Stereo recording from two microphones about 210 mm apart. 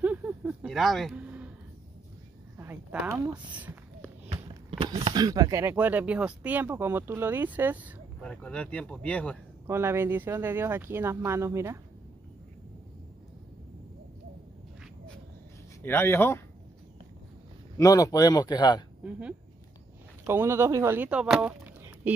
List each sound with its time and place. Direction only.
0.0 s a sound: 5° right (ahead or behind)
2.6 s a sound: 5° right (ahead or behind)
4.3 s speech: 25° right (ahead or behind); by 7.9 s 10° right (ahead or behind)
8.2 s speech: 5° left (ahead or behind)
9.7 s speech: 10° right (ahead or behind)
15.8 s speech: 10° left (ahead or behind)
17.7 s speech: 15° left (ahead or behind)
19.0 s speech: 5° right (ahead or behind)